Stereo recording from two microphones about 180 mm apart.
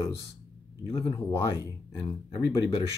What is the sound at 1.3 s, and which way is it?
Speech, 15° left (ahead or behind).